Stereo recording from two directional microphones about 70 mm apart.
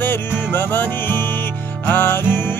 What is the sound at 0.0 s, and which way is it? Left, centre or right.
Music, left.